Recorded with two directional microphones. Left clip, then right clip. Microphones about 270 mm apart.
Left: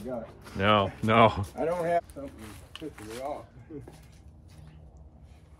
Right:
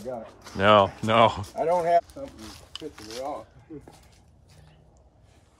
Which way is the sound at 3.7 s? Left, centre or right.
Right.